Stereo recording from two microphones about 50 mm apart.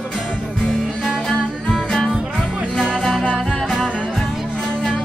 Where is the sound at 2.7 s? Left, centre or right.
Centre.